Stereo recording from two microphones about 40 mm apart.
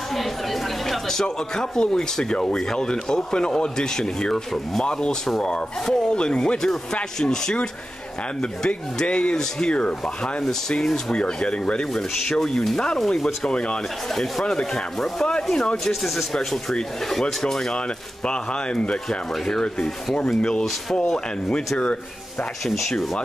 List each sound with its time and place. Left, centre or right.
0.1 s a sound: centre
1.2 s speech: centre
5.4 s speech: left
10.8 s speech: centre
11.1 s speech: left
11.9 s speech: centre
13.5 s speech: left
14.1 s speech: centre
15.5 s speech: left
15.9 s speech: centre
17.1 s speech: centre
17.7 s speech: left
19.0 s speech: centre
22.7 s speech: centre